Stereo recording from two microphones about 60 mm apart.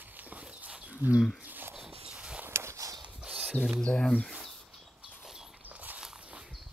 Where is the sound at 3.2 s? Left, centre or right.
Centre.